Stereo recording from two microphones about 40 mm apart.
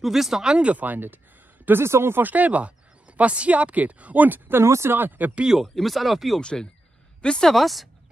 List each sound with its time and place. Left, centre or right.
0.0 s speech: centre
0.4 s speech: right
0.7 s speech: right
1.7 s speech: right
2.2 s speech: right
4.6 s speech: right
5.0 s speech: right
5.8 s speech: centre
6.4 s speech: left
7.5 s speech: centre